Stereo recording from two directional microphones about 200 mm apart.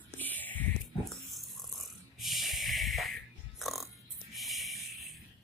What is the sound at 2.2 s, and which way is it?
Snort, centre (ahead or behind).